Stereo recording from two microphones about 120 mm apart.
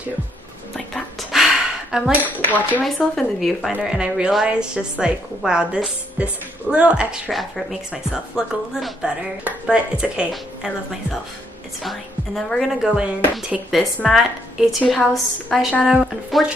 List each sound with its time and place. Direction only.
1.3 s a sound: 5° right (ahead or behind)
2.2 s speech: 15° left (ahead or behind)
2.8 s a woman's voice: centre (ahead or behind)